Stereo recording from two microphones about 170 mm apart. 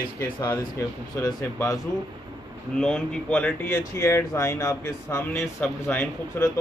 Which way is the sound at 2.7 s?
5° left (ahead or behind).